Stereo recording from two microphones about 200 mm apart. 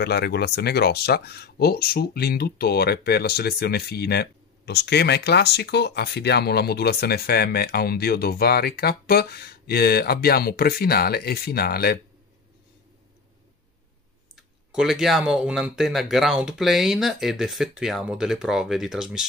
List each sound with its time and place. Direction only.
0.0 s speech: 55° left (ahead or behind)
14.3 s speech: centre (ahead or behind)